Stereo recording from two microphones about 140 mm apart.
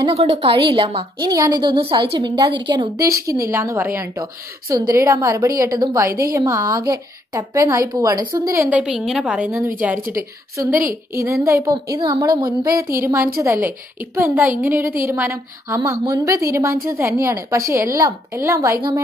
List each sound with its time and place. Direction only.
0.1 s a woman's voice: 45° right (ahead or behind); by 8.6 s 25° right (ahead or behind)
8.6 s a woman's voice: 10° right (ahead or behind)
10.7 s a woman's voice: 80° right
11.4 s a woman's voice: 20° right (ahead or behind)